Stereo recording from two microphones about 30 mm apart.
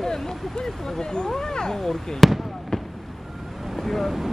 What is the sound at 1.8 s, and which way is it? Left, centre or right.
Speech, centre.